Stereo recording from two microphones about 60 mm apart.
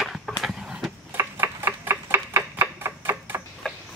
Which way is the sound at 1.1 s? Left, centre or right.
Right.